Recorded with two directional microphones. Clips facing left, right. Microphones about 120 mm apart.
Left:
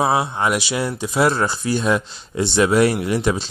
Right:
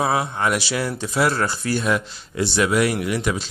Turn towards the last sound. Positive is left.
turn(degrees=30)  # may be behind; listen again after turning